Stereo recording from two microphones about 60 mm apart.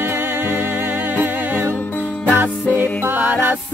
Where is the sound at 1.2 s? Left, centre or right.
Right.